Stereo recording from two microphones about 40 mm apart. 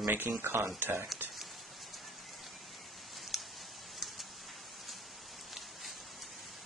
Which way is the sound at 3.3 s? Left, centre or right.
Centre.